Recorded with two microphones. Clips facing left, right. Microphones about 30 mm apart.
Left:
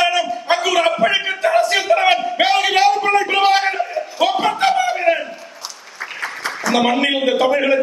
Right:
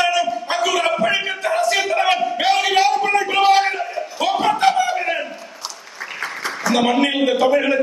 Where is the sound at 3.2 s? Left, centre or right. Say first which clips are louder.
Even; centre.